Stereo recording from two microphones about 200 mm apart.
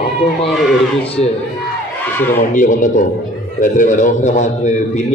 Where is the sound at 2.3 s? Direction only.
40° left (ahead or behind).